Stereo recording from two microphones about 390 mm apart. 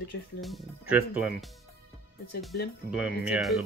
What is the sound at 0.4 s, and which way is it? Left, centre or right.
Speech, centre.